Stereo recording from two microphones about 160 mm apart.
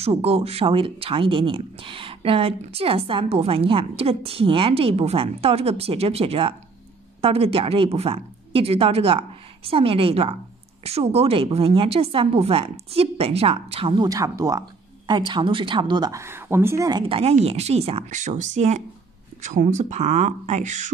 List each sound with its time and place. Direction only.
0.0 s a woman's voice: 40° right (ahead or behind)
14.0 s a woman's voice: 20° right (ahead or behind)
17.0 s speech: 35° right (ahead or behind)